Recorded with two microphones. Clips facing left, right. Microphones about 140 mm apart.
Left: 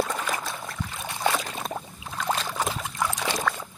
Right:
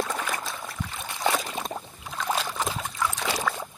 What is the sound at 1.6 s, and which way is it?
Boat, 5° left (ahead or behind).